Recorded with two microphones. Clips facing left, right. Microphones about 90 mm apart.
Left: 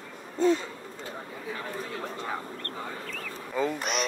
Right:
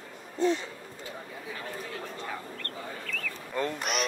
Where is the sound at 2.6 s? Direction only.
25° left (ahead or behind).